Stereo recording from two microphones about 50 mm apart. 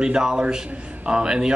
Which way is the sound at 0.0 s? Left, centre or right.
Centre.